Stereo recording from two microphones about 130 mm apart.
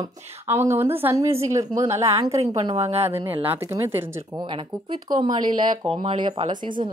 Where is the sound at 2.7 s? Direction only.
55° right (ahead or behind).